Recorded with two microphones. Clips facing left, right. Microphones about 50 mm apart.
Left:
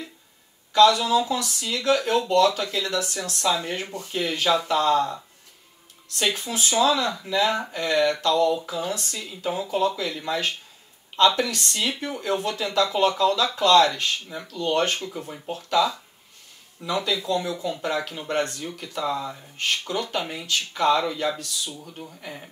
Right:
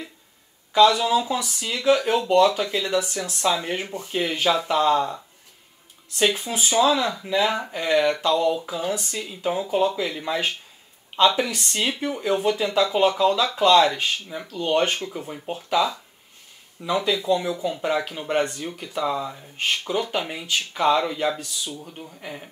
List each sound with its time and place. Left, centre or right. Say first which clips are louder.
0.7 s speech: even; centre